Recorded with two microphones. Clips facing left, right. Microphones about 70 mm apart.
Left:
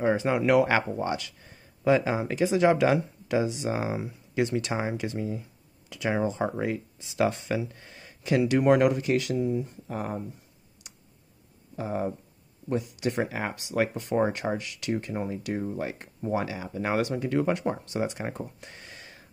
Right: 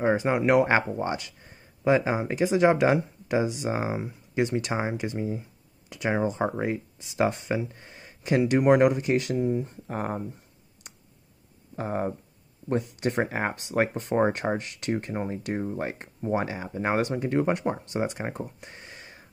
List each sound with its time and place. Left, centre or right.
0.0 s speech: right
10.8 s clicking: right
11.7 s speech: right
18.6 s a sound: right